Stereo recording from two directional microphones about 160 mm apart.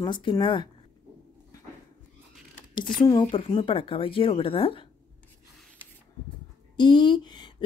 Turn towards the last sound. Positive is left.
turn(degrees=25)  # may be behind; listen again after turning